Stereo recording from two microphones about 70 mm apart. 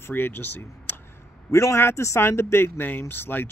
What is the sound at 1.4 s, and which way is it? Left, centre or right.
Speech, left.